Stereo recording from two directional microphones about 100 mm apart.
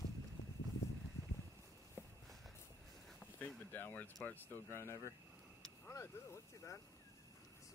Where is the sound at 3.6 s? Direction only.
20° left (ahead or behind).